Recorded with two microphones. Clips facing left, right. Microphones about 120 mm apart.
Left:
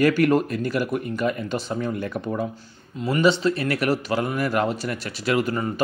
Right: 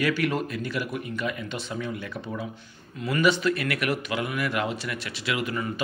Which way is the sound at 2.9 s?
25° left (ahead or behind).